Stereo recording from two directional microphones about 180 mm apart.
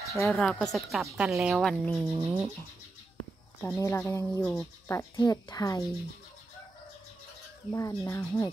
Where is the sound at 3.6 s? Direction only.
15° left (ahead or behind).